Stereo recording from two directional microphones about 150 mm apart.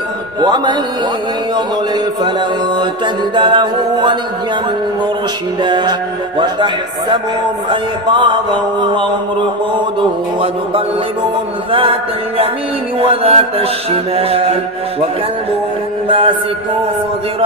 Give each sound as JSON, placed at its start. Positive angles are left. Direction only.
{"t": 0.4, "sound": "mantra", "side_deg": -30}
{"t": 3.3, "sound": "mantra", "side_deg": -30}
{"t": 5.6, "sound": "mantra", "side_deg": -30}
{"t": 16.1, "sound": "mantra", "side_deg": -35}